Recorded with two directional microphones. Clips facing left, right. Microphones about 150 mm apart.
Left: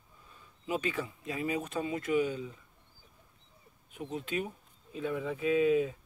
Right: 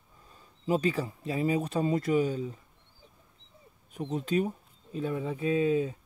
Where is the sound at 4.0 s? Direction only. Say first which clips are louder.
Right 6 dB; 40° right (ahead or behind).